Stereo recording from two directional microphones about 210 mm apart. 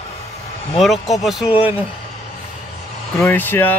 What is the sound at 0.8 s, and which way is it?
Speech, centre (ahead or behind).